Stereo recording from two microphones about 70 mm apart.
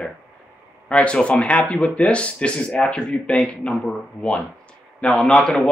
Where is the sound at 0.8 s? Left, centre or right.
Centre.